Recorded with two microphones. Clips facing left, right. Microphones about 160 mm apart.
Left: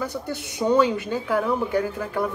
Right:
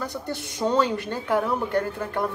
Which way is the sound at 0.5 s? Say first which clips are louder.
Left 3 dB; 10° left (ahead or behind).